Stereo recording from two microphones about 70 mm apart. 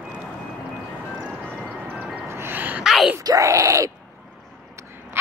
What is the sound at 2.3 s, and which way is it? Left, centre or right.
Music, right.